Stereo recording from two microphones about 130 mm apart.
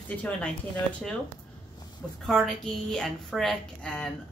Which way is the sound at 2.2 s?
Centre (ahead or behind).